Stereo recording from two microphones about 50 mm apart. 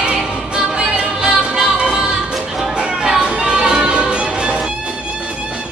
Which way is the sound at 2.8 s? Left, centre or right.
Centre.